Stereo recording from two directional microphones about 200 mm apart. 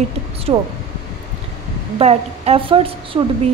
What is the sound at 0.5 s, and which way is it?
Speech, 30° right (ahead or behind).